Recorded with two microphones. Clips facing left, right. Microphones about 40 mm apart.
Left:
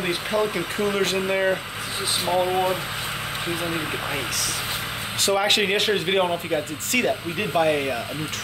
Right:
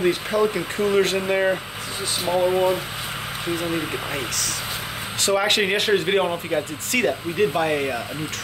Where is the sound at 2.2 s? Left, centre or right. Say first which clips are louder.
Right 3 dB; centre.